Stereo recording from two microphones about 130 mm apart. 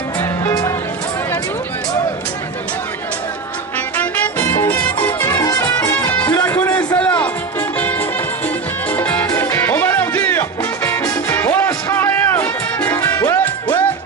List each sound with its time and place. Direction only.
0.2 s music: 25° left (ahead or behind)
3.9 s music: 10° left (ahead or behind)
5.4 s music: 25° left (ahead or behind)
6.4 s a sound: 15° left (ahead or behind)
8.9 s music: 10° left (ahead or behind)